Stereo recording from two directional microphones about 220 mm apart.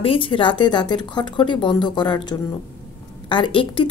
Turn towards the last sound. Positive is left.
turn(degrees=25)  # may be behind; listen again after turning